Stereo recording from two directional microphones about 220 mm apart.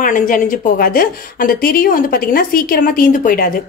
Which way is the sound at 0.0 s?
35° left (ahead or behind).